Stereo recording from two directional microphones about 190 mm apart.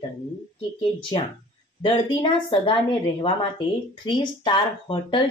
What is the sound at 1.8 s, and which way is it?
Speech, 25° left (ahead or behind).